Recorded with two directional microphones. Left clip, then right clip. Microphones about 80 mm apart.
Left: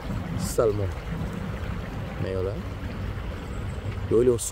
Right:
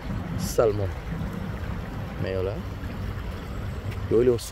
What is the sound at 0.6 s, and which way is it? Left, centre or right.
Speech, centre.